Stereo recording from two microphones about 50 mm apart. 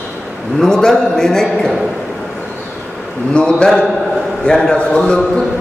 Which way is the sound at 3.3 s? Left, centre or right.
Centre.